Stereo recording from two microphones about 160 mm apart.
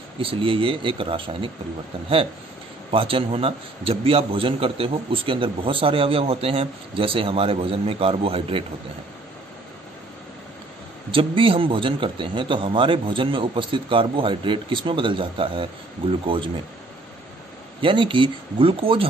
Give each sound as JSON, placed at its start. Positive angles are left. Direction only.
{"t": 0.2, "sound": "a man's voice", "side_deg": -35}
{"t": 2.9, "sound": "a man's voice", "side_deg": -35}
{"t": 11.1, "sound": "a man's voice", "side_deg": -35}
{"t": 17.8, "sound": "a man's voice", "side_deg": -30}